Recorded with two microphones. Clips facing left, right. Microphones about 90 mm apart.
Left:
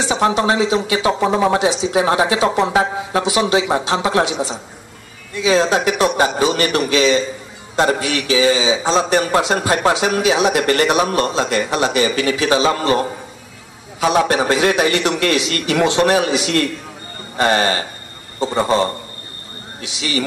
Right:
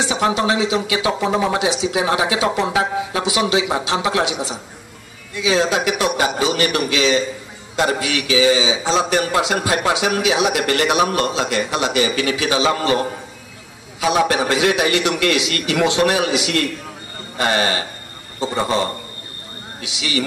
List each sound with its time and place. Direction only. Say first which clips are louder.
0.0 s speech: left 2 dB; 35° left (ahead or behind)